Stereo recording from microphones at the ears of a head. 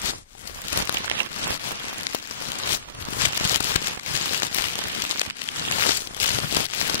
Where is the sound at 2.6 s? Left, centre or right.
Left.